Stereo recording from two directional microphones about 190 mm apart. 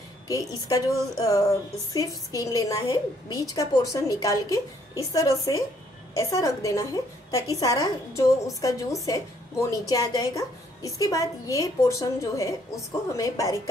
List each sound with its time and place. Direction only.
0.3 s a woman's voice: 20° left (ahead or behind)
2.0 s a woman's voice: 15° left (ahead or behind)